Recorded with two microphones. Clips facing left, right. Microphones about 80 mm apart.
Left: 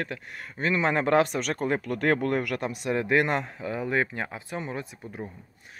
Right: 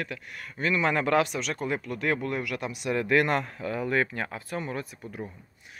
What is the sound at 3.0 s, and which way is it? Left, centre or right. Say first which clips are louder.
Speech: right 1 dB; left.